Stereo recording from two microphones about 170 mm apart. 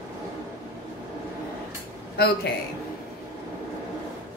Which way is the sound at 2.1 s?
70° left (ahead or behind).